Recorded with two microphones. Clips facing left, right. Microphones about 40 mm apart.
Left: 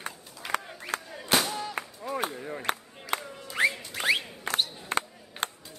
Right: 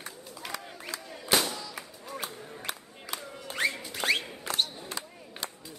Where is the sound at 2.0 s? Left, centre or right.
Left.